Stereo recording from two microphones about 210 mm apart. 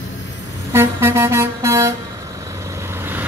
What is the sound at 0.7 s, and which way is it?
Music, 10° right (ahead or behind).